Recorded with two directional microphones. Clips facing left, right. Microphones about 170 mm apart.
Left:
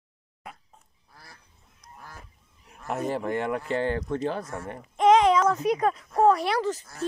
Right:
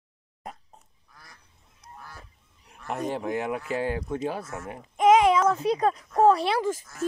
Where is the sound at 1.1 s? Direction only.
30° left (ahead or behind).